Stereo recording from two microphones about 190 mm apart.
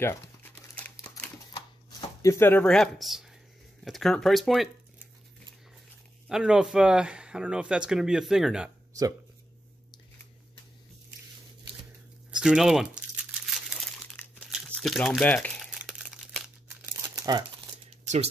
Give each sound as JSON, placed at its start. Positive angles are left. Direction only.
{"t": 0.0, "sound": "crumpling", "side_deg": 10}
{"t": 1.5, "sound": "shuffling cards", "side_deg": 20}
{"t": 3.8, "sound": "speech", "side_deg": 0}
{"t": 6.2, "sound": "speech", "side_deg": -5}
{"t": 12.3, "sound": "crumpling", "side_deg": -5}
{"t": 17.1, "sound": "crumpling", "side_deg": -20}